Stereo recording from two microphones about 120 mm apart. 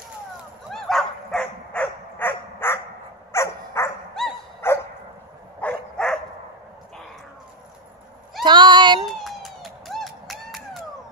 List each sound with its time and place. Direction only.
0.7 s dog: 5° left (ahead or behind); by 3.9 s 20° left (ahead or behind)
4.2 s dog: 5° left (ahead or behind)
4.6 s dog: 20° left (ahead or behind)
5.6 s dog: 10° left (ahead or behind)
8.5 s a sound: 40° right (ahead or behind)
9.0 s a sound: centre (ahead or behind)